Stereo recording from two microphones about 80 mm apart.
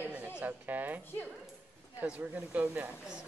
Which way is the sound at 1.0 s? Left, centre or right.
Left.